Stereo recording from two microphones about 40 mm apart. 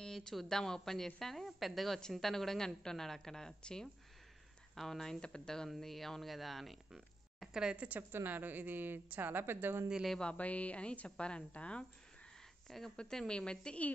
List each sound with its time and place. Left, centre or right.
0.0 s a woman's voice: centre
2.0 s a woman's voice: centre
5.2 s a woman's voice: left
5.8 s speech: centre
7.7 s a woman's voice: right
8.3 s speech: right
10.3 s a woman's voice: left
12.6 s speech: centre
12.9 s a woman's voice: centre